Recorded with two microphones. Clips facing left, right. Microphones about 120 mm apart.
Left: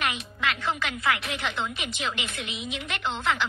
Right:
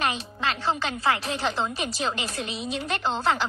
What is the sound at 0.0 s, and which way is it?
Speech, 30° right (ahead or behind).